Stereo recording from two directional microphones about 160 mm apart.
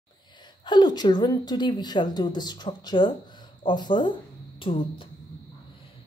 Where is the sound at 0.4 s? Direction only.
25° left (ahead or behind).